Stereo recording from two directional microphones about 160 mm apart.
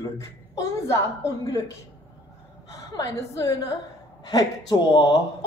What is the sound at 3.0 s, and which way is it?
Speech, 20° left (ahead or behind).